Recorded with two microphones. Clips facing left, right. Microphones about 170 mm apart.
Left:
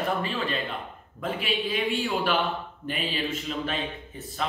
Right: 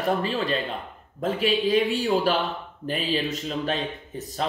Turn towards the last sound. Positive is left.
turn(degrees=-40)  # may be behind; listen again after turning